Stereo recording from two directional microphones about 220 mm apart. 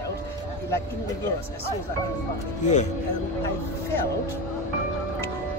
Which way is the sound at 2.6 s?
30° left (ahead or behind).